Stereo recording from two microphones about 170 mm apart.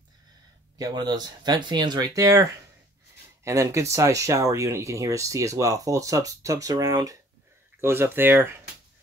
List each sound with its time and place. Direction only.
0.7 s speech: 25° right (ahead or behind)
3.4 s speech: 20° right (ahead or behind)